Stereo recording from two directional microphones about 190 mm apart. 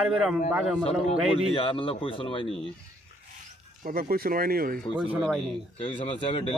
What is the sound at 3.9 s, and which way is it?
Speech, 50° right (ahead or behind).